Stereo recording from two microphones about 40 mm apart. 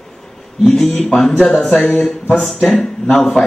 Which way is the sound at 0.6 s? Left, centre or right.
Centre.